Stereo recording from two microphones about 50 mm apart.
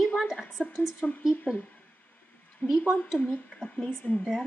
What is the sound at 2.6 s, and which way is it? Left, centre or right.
Speech, centre.